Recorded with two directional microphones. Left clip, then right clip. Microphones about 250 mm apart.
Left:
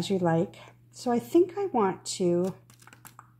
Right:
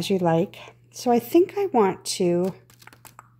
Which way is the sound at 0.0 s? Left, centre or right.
Right.